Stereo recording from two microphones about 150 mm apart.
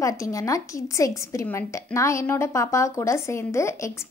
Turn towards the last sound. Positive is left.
turn(degrees=20)  # may be behind; listen again after turning